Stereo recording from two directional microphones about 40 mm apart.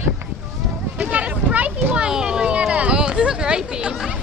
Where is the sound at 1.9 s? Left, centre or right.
Centre.